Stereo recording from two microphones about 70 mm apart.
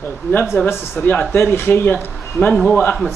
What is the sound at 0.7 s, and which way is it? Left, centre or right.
A man's voice, left.